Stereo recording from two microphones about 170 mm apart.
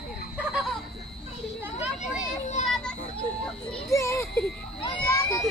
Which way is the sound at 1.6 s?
10° right (ahead or behind).